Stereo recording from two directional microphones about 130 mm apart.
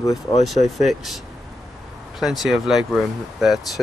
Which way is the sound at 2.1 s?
Centre (ahead or behind).